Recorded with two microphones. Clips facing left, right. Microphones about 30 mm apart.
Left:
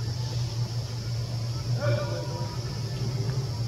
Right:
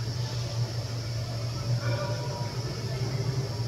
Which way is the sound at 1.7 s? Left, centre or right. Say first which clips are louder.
Left 6 dB; centre.